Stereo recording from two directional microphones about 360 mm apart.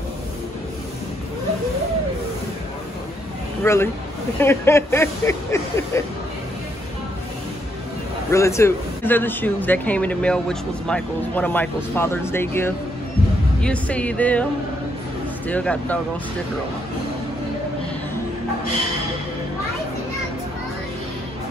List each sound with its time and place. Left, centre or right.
3.6 s speech: centre
8.3 s speech: centre